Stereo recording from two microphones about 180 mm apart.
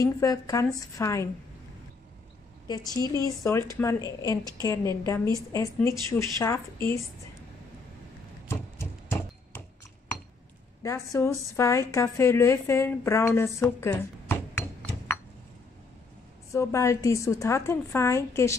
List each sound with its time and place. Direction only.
0.0 s a woman's voice: 20° left (ahead or behind)
2.7 s a woman's voice: 20° left (ahead or behind)
10.8 s a woman's voice: 15° left (ahead or behind)
16.5 s a woman's voice: 15° left (ahead or behind)